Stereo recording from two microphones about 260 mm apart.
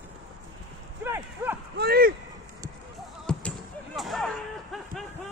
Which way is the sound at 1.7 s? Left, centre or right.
Right.